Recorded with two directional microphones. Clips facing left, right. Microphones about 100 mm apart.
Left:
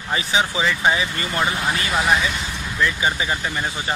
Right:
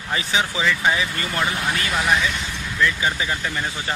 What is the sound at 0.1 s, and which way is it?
Speech, 15° left (ahead or behind).